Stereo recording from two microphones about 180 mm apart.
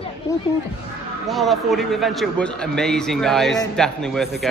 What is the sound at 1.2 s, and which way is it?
A man's voice, centre (ahead or behind).